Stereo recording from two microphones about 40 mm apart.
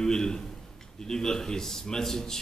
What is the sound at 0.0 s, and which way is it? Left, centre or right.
A man's voice, centre.